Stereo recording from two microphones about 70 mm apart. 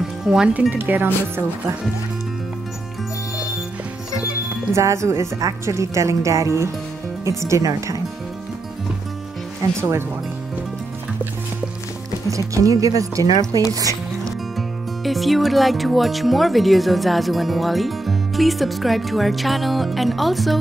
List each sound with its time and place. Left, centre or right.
0.2 s speech: centre
0.6 s speech: right
4.7 s a woman's voice: right
9.8 s speech: right
12.3 s speech: right
15.0 s speech: centre